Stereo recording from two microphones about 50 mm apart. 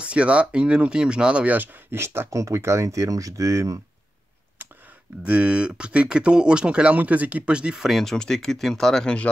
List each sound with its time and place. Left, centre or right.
0.0 s speech: right
1.6 s speech: right
2.3 s speech: right
5.2 s speech: right
7.8 s speech: centre